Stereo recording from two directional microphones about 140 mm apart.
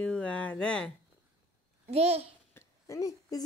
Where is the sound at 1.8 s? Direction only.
45° right (ahead or behind).